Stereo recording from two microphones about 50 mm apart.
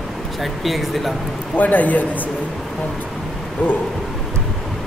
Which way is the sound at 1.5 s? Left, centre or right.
Left.